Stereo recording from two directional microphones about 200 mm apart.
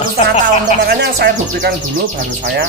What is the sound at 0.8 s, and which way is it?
Speech, 55° right (ahead or behind).